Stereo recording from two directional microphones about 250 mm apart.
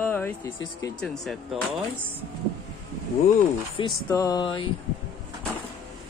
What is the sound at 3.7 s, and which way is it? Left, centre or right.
Speech, centre.